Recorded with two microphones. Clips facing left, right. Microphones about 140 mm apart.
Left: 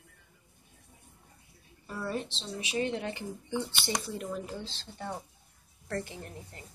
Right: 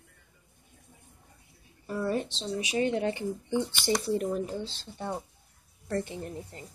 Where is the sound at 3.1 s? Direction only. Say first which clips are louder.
Right 6 dB; 20° right (ahead or behind).